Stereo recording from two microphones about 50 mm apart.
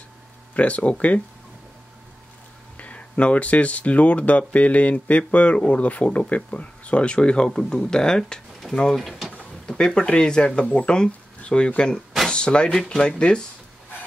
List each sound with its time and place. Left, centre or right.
0.6 s speech: left
2.8 s speech: left; by 9.3 s centre
9.4 s speech: centre